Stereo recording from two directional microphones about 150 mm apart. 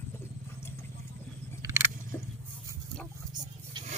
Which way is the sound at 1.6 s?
20° right (ahead or behind).